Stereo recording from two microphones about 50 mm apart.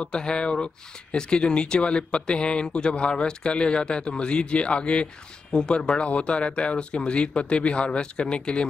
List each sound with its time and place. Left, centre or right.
0.0 s speech: centre